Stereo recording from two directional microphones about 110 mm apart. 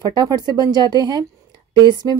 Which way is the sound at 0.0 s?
35° right (ahead or behind).